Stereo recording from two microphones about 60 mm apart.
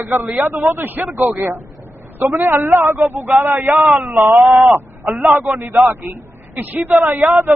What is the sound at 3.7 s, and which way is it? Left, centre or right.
Speech, centre.